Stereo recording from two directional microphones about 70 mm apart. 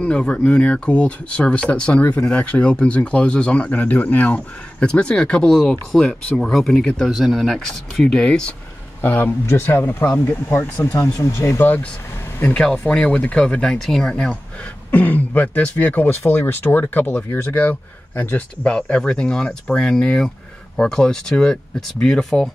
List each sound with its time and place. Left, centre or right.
0.0 s speech: centre
9.0 s speech: left
11.6 s speech: left
12.9 s speech: centre
14.1 s speech: centre
18.6 s speech: centre